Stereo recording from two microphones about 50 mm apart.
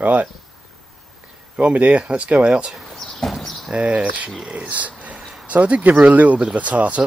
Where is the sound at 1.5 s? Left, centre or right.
Right.